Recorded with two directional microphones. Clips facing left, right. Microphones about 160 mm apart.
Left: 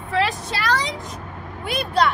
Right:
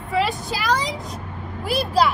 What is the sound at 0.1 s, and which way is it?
Speech, centre (ahead or behind).